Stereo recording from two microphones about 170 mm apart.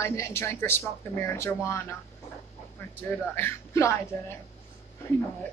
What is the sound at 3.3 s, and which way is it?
Speech, 15° left (ahead or behind).